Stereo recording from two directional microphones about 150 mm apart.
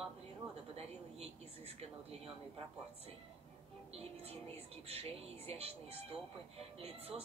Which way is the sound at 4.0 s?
40° right (ahead or behind).